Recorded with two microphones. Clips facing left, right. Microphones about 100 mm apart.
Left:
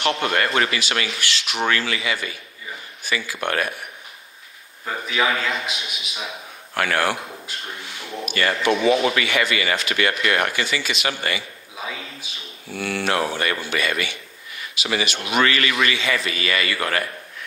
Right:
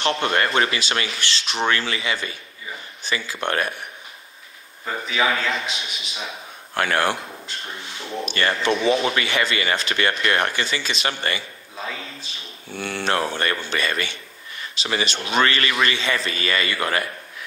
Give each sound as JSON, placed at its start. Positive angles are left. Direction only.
{"t": 0.0, "sound": "speech", "side_deg": -30}
{"t": 4.8, "sound": "a man's voice", "side_deg": 0}
{"t": 6.7, "sound": "speech", "side_deg": -25}
{"t": 7.5, "sound": "a man's voice", "side_deg": 5}
{"t": 7.8, "sound": "speech", "side_deg": -25}
{"t": 11.7, "sound": "a man's voice", "side_deg": 5}
{"t": 12.7, "sound": "speech", "side_deg": -30}